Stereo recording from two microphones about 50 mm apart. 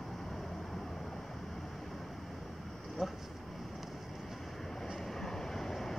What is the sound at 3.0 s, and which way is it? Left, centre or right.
Speech, centre.